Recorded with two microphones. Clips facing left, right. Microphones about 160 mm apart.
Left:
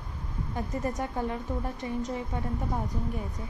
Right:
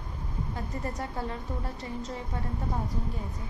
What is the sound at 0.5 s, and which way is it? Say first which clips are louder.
A woman's voice: left 5 dB; 20° left (ahead or behind).